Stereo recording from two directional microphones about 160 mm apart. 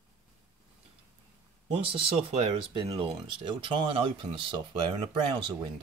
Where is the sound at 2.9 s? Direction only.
35° right (ahead or behind).